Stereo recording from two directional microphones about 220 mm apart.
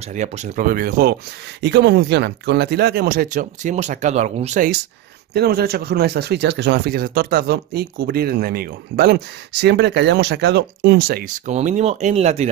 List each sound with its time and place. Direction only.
0.1 s speech: 35° right (ahead or behind)
5.3 s speech: 45° right (ahead or behind); by 12.4 s 30° right (ahead or behind)